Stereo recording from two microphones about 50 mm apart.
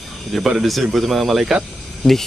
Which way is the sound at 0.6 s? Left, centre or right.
Centre.